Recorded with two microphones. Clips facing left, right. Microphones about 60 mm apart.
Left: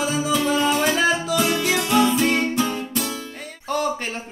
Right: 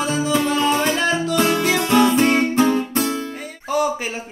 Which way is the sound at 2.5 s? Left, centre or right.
Right.